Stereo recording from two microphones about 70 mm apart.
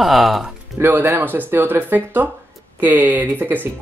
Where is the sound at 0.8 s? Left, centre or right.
Right.